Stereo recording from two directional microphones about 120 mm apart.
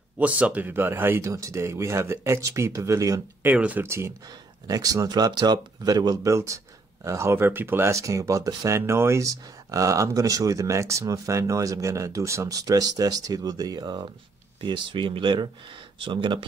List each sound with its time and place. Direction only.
0.2 s speech: 10° right (ahead or behind)
3.4 s speech: 15° right (ahead or behind); by 16.4 s 45° right (ahead or behind)